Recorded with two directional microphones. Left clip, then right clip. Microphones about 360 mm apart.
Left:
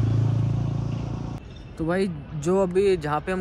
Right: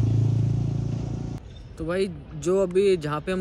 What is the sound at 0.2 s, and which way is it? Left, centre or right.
Vehicle, centre.